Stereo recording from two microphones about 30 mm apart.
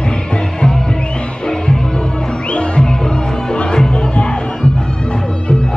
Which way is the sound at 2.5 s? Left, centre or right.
Left.